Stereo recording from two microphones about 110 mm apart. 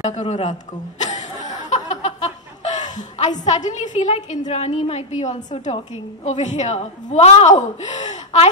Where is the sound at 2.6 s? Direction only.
90° left.